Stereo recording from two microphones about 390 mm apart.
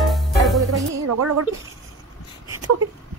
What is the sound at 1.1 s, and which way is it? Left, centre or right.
Speech, right.